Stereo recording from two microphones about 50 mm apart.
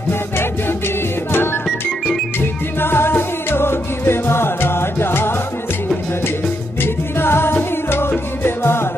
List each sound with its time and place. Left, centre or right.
0.1 s music: left
2.8 s music: left
6.8 s music: left